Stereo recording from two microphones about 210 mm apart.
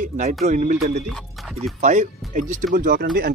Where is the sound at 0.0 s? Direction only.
35° right (ahead or behind).